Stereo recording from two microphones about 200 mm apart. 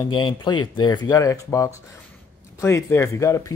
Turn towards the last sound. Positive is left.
turn(degrees=15)  # may be behind; listen again after turning